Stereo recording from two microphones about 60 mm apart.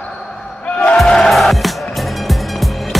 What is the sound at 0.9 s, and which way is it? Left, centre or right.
Music, centre.